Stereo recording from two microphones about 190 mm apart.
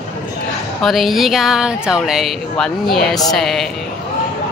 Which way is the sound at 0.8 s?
Centre (ahead or behind).